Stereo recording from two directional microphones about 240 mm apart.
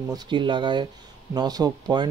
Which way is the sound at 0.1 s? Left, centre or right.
Centre.